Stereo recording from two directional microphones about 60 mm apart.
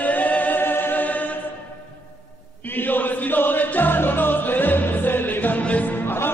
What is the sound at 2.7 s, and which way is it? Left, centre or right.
Music, left.